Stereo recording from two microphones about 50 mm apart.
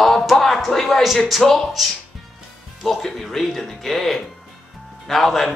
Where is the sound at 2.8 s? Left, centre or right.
Centre.